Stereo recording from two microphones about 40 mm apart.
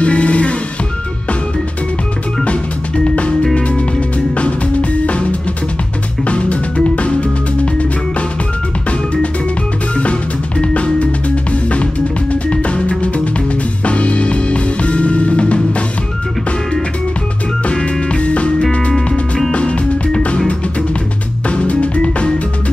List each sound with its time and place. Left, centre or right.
0.0 s music: left
3.5 s music: left
6.2 s music: left
10.6 s music: left
17.7 s music: left
21.5 s music: left